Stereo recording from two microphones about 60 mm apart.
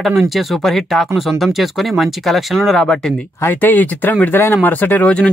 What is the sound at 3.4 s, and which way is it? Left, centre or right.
Speech, left.